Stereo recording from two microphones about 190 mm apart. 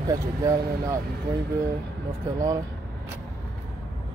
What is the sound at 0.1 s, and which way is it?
Speech, 15° right (ahead or behind).